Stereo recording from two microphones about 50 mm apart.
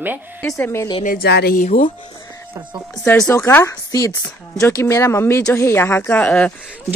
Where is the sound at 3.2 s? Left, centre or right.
Left.